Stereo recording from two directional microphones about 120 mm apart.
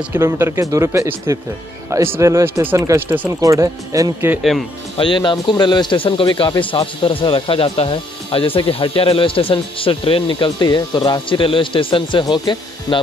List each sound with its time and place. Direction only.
0.1 s speech: 20° right (ahead or behind)
4.4 s speech: centre (ahead or behind)
4.9 s speech: 45° left (ahead or behind)